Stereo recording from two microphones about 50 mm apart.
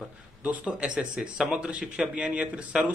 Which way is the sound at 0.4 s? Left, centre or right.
Right.